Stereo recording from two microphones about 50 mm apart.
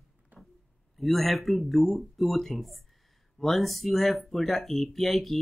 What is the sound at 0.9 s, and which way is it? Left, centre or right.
Speech, centre.